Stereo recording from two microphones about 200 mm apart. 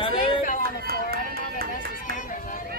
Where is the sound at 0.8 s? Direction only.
50° right (ahead or behind).